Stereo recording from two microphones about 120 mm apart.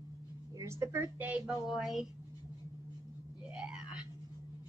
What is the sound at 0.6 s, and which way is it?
A woman's voice, 25° right (ahead or behind).